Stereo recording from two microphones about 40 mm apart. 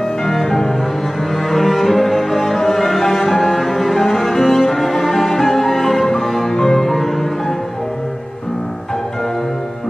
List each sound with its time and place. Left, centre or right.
0.2 s music: centre
1.3 s cello: centre